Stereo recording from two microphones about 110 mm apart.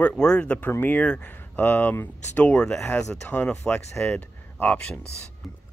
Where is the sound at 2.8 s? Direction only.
20° left (ahead or behind).